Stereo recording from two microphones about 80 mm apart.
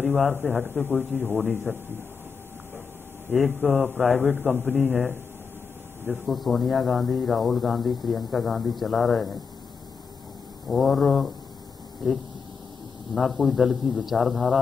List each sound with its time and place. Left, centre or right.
0.0 s speech: centre
3.3 s speech: centre
10.7 s speech: centre
13.1 s speech: centre